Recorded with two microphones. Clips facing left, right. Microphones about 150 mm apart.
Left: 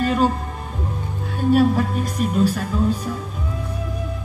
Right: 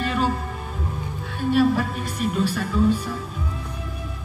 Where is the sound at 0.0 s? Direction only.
40° left (ahead or behind).